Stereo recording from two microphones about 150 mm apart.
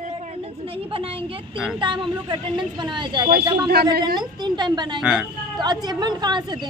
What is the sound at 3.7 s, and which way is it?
Speech, 90° right.